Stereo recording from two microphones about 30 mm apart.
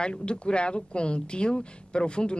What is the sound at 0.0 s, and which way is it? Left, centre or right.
Speech, left.